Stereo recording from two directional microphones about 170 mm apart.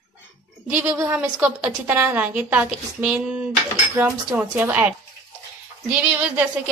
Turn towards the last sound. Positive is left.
turn(degrees=-10)  # may be behind; listen again after turning